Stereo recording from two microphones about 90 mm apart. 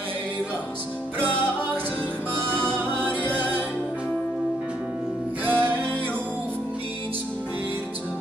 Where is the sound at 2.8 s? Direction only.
20° right (ahead or behind).